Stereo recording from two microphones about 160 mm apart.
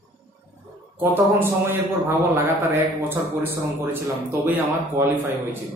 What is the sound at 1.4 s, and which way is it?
A man's voice, 15° right (ahead or behind).